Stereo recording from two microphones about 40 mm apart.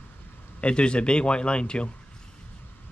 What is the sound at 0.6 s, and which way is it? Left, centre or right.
Speech, left.